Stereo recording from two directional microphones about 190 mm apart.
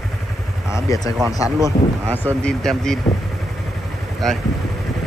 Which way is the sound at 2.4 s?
5° left (ahead or behind).